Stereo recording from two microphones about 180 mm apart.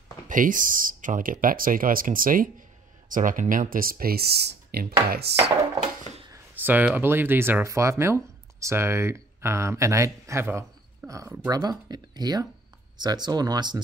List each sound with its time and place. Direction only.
0.3 s speech: 50° right (ahead or behind); by 5.5 s 65° right (ahead or behind)
5.6 s a sound: 40° right (ahead or behind)
6.3 s speech: 10° right (ahead or behind)